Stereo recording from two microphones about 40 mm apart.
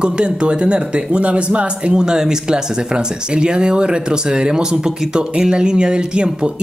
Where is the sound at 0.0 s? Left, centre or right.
Right.